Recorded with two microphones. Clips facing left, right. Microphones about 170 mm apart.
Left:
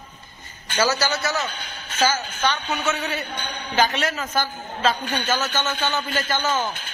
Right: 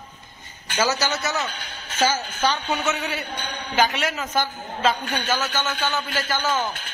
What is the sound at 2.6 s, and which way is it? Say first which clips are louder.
A man's voice: even; 10° right (ahead or behind).